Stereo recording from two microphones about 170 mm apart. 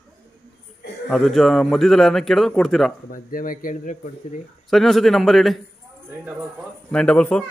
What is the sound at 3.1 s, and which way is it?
Speech, 55° left (ahead or behind).